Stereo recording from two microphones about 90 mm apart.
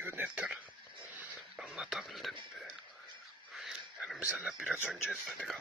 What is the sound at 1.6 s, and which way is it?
Speech, 5° right (ahead or behind).